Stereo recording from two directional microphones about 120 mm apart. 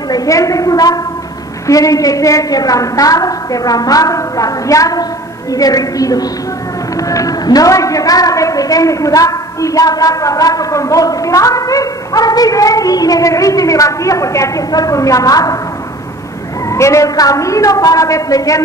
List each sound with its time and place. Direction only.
0.1 s a woman's voice: 30° left (ahead or behind)
16.6 s a woman's voice: 25° left (ahead or behind)